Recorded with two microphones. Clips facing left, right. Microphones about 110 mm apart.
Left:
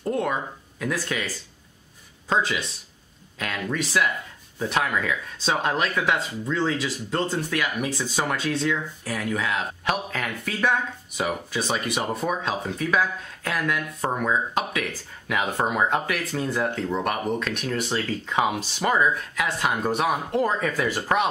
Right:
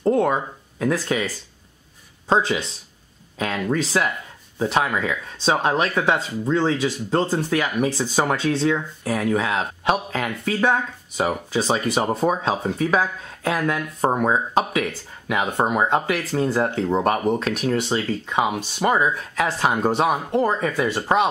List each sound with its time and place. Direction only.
0.0 s speech: 25° right (ahead or behind)
2.2 s speech: 30° right (ahead or behind)
13.0 s speech: 20° right (ahead or behind)
13.6 s speech: 35° right (ahead or behind); by 16.0 s 20° right (ahead or behind)
16.1 s speech: 30° right (ahead or behind)
18.2 s speech: 10° right (ahead or behind)
19.3 s speech: 30° right (ahead or behind)
20.2 s speech: 15° right (ahead or behind)